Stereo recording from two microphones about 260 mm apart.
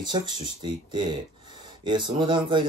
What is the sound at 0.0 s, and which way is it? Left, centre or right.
Speech, centre.